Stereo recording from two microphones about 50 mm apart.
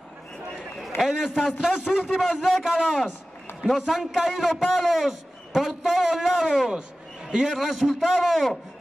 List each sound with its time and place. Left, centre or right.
0.9 s a man's voice: left
1.6 s a man's voice: centre